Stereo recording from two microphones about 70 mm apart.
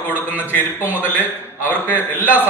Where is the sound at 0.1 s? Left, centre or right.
Right.